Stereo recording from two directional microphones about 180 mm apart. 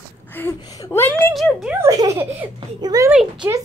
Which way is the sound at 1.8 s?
20° right (ahead or behind).